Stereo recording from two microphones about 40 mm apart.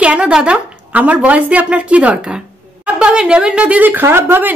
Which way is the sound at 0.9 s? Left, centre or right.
Right.